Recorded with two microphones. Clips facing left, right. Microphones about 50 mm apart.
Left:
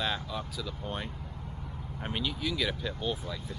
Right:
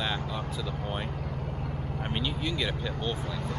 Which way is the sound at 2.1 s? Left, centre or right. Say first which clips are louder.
Even; centre.